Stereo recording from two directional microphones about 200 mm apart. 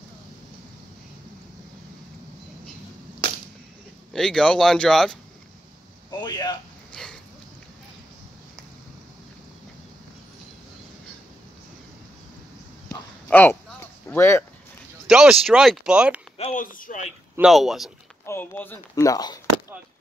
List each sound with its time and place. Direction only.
4.1 s speech: centre (ahead or behind)
6.0 s a sound: 20° left (ahead or behind)
6.9 s a sound: 5° left (ahead or behind)
12.8 s a sound: 10° left (ahead or behind)
14.0 s speech: 10° left (ahead or behind)
15.0 s speech: 5° right (ahead or behind)
16.3 s speech: 35° left (ahead or behind)
17.4 s speech: centre (ahead or behind)
18.2 s speech: 10° left (ahead or behind)